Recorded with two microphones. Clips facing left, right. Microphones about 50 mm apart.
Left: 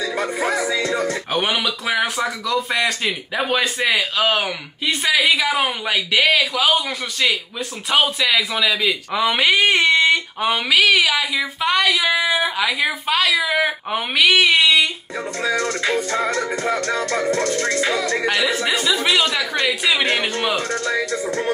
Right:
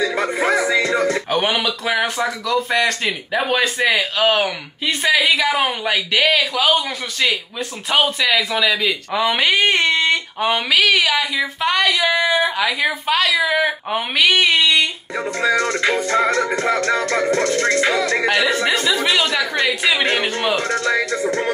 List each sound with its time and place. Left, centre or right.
0.0 s music: right
1.3 s speech: centre
15.1 s music: right
18.2 s speech: centre
20.6 s music: right